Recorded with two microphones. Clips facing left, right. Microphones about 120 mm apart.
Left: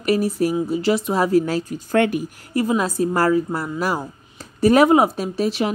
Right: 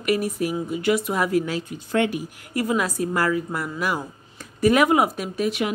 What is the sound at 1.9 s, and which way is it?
Speech, 50° left (ahead or behind).